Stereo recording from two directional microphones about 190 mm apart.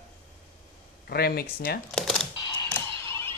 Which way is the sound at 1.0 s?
55° left (ahead or behind).